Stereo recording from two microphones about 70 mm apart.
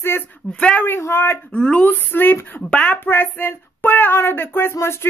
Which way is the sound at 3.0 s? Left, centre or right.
Left.